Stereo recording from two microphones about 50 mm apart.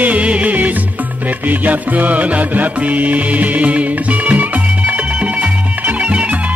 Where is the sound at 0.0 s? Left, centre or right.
Right.